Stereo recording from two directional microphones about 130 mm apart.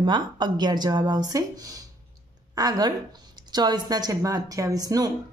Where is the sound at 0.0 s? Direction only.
35° right (ahead or behind).